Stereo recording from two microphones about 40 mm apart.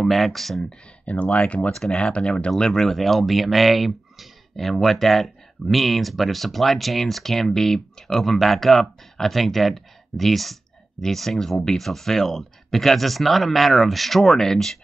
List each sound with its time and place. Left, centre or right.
0.0 s speech: centre
1.1 s speech: left
1.7 s speech: centre
2.6 s speech: centre